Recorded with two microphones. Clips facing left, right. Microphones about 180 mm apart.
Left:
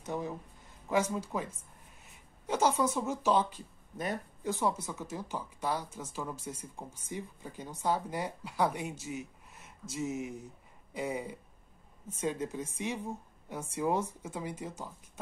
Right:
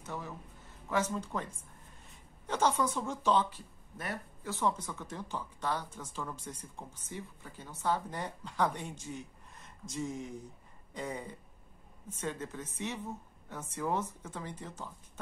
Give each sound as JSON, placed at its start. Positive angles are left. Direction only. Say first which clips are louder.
{"t": 0.0, "sound": "a man's voice", "louder": "left 6 dB", "side_deg": 15}